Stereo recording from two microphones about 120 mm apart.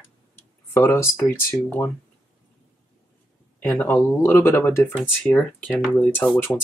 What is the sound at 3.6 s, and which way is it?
Speech, 15° left (ahead or behind).